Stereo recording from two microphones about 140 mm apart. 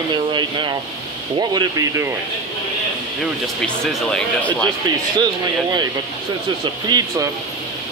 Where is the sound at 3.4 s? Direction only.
5° left (ahead or behind).